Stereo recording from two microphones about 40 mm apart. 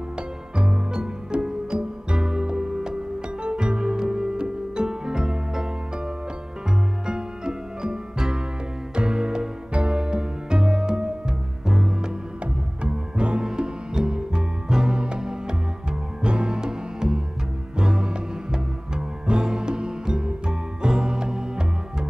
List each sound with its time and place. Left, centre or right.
0.6 s music: right